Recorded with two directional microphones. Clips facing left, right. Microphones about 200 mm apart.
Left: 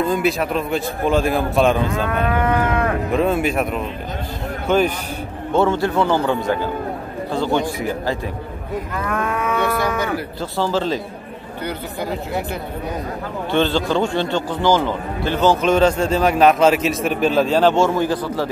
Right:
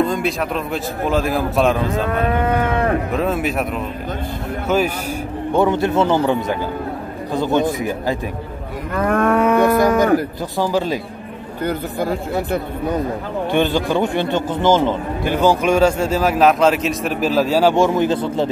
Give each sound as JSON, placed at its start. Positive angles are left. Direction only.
{"t": 0.1, "sound": "a man's voice", "side_deg": 0}
{"t": 3.1, "sound": "a man's voice", "side_deg": 0}
{"t": 5.5, "sound": "a man's voice", "side_deg": -15}
{"t": 9.0, "sound": "moo", "side_deg": -50}
{"t": 10.6, "sound": "a man's voice", "side_deg": -15}
{"t": 11.6, "sound": "moo", "side_deg": -50}
{"t": 13.5, "sound": "a man's voice", "side_deg": -15}